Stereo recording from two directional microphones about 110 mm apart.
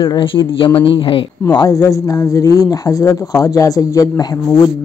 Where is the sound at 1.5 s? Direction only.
35° left (ahead or behind).